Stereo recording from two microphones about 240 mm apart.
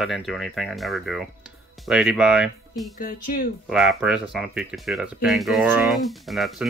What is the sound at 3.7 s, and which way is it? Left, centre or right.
Speech, centre.